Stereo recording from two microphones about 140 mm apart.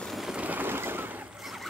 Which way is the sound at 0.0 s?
Centre (ahead or behind).